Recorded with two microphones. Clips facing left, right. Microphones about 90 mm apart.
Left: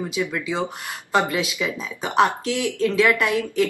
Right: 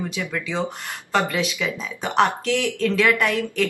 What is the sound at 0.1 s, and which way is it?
Speech, 15° left (ahead or behind).